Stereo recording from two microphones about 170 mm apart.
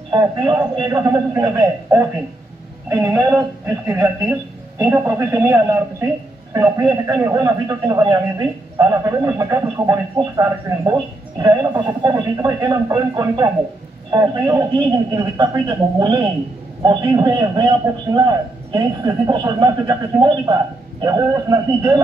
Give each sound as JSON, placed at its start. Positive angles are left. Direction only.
{"t": 0.1, "sound": "a man's voice", "side_deg": -25}